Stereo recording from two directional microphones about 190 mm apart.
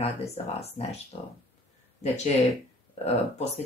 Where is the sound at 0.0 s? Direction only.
35° left (ahead or behind).